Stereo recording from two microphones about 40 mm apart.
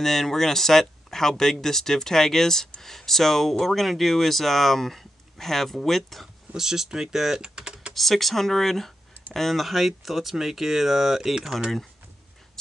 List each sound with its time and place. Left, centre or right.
0.0 s speech: centre
6.5 s speech: centre
7.4 s typing: centre
7.9 s speech: centre